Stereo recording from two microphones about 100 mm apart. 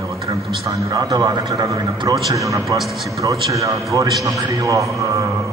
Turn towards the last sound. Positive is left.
turn(degrees=-35)  # may be behind; listen again after turning